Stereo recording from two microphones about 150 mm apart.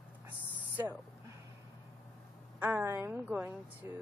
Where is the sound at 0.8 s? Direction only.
20° right (ahead or behind).